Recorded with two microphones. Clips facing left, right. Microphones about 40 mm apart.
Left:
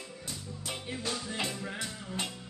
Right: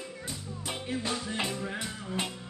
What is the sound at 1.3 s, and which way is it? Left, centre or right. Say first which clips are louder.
Music: right 2 dB; right.